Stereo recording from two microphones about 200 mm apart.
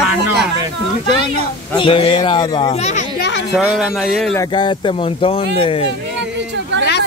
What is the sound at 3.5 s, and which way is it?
Speech, centre (ahead or behind).